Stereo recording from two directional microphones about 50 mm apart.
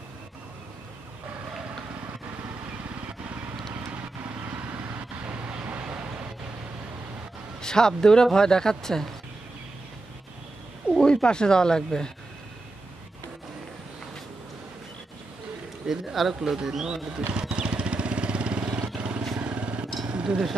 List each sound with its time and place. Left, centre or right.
5.2 s vehicle: right
7.6 s speech: centre
11.0 s speech: centre
15.9 s speech: centre
16.3 s speech: centre
17.3 s vehicle: centre
20.1 s a sound: centre